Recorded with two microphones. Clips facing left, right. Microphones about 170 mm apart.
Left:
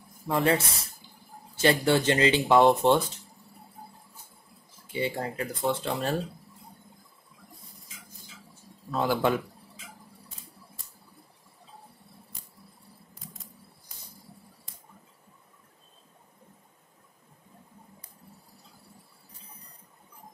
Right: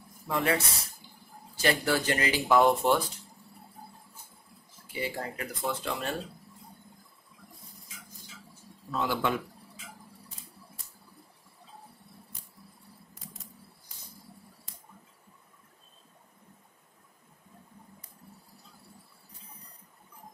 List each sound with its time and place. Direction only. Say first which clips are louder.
0.3 s speech: left 4 dB; 30° left (ahead or behind)
4.9 s speech: left 5 dB; 30° left (ahead or behind)
9.0 s speech: left 5 dB; 45° left (ahead or behind)